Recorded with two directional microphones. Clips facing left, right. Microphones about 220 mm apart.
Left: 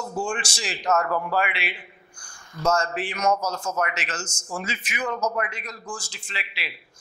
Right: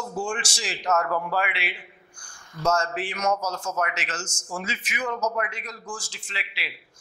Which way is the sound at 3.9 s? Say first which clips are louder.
Left 1 dB; 15° left (ahead or behind).